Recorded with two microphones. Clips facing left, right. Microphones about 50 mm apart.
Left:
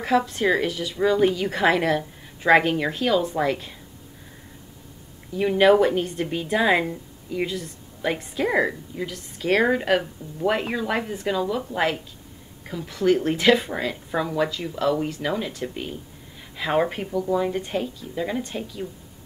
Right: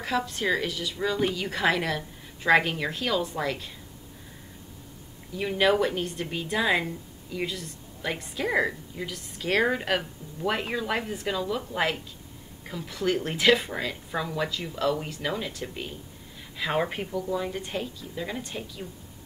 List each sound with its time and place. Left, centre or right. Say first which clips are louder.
0.0 s speech: left 6 dB; centre
5.4 s speech: left 7 dB; centre
17.2 s speech: left 8 dB; centre